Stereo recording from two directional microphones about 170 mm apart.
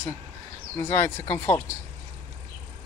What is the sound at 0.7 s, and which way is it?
Speech, 15° left (ahead or behind).